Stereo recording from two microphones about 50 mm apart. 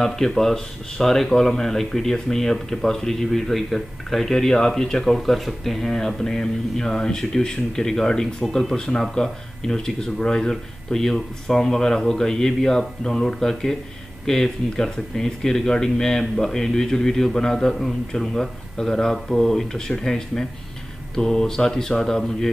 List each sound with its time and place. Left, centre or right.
0.0 s speech: centre